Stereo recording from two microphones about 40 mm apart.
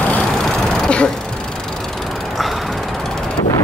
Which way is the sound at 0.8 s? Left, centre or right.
Left.